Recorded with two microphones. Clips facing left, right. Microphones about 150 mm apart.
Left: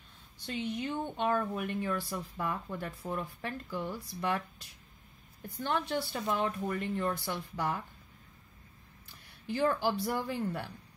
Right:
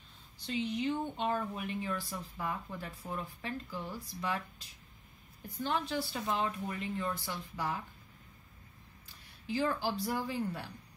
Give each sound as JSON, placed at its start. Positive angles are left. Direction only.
{"t": 0.5, "sound": "a woman's voice", "side_deg": 55}
{"t": 9.5, "sound": "a woman's voice", "side_deg": 55}